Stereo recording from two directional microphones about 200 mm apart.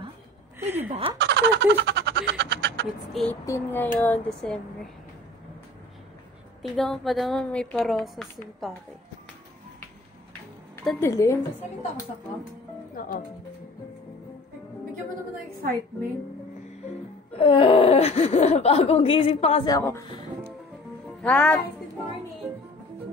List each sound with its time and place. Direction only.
0.6 s a sound: 10° right (ahead or behind)
0.8 s speech: 30° right (ahead or behind)
1.1 s a sound: 60° right (ahead or behind)
3.1 s a woman's voice: centre (ahead or behind)
3.4 s speech: 10° left (ahead or behind)
6.6 s a woman's voice: centre (ahead or behind)
10.8 s speech: 10° left (ahead or behind)
13.0 s speech: 45° left (ahead or behind)
17.4 s speech: 25° left (ahead or behind)
19.7 s speech: 15° left (ahead or behind)
21.2 s speech: 5° left (ahead or behind)